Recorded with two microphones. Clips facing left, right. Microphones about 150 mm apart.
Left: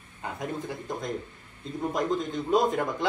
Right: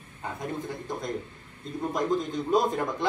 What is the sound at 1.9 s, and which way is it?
Speech, centre (ahead or behind).